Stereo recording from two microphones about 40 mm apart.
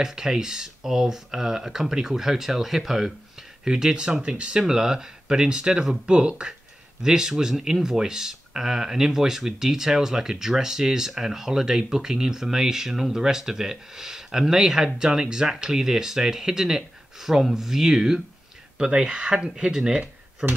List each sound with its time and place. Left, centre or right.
0.0 s speech: centre
7.0 s speech: centre
18.8 s speech: right